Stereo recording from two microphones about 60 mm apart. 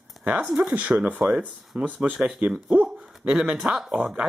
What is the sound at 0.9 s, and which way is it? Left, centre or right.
Speech, centre.